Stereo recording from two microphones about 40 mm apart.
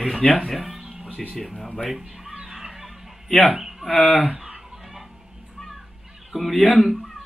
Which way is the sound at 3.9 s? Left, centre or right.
Left.